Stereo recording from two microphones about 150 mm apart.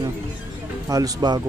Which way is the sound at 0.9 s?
25° right (ahead or behind).